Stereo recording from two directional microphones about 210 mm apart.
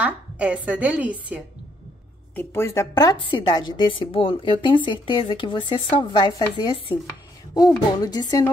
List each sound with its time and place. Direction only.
0.0 s a woman's voice: 5° right (ahead or behind)
2.3 s a woman's voice: 10° left (ahead or behind)